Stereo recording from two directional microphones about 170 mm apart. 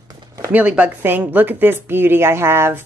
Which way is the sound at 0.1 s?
25° right (ahead or behind).